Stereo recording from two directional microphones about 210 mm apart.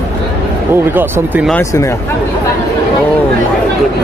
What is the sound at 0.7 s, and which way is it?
Speech, 10° right (ahead or behind).